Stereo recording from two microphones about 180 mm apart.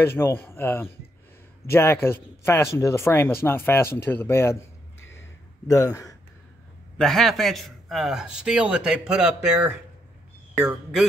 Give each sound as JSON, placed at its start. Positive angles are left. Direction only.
{"t": 0.0, "sound": "speech", "side_deg": 15}
{"t": 5.7, "sound": "speech", "side_deg": 20}
{"t": 7.0, "sound": "a man's voice", "side_deg": 0}